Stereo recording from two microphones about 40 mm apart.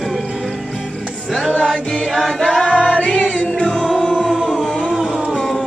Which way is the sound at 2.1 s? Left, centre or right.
Centre.